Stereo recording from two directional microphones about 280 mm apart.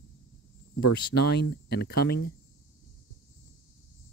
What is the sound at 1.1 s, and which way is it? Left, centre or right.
Speech, left.